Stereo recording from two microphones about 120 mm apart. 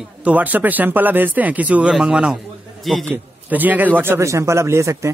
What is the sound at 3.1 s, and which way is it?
Speech, 15° right (ahead or behind).